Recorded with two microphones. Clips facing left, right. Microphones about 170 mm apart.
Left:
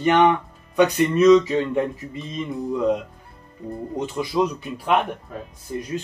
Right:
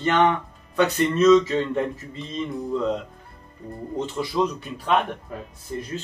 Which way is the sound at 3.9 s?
10° left (ahead or behind).